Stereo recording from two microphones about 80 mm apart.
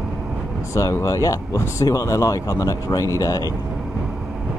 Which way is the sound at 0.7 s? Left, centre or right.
Left.